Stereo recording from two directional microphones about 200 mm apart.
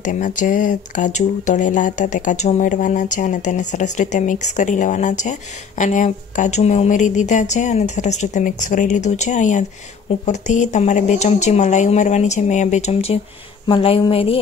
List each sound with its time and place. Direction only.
0.0 s speech: 40° left (ahead or behind)